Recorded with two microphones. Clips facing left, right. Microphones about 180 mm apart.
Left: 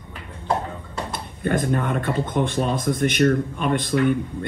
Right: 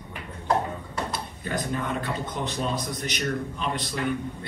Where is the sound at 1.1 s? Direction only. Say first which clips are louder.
Left 7 dB; 55° left (ahead or behind).